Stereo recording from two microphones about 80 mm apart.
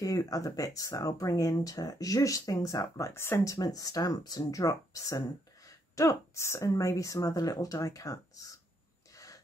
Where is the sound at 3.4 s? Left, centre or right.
Left.